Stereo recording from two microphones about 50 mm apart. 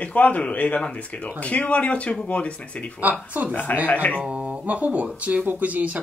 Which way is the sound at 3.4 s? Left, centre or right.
Right.